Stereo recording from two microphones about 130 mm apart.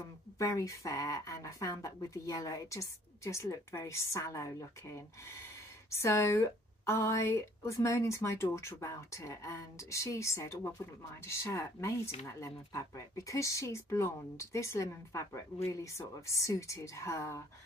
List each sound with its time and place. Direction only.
0.4 s a woman's voice: 25° left (ahead or behind)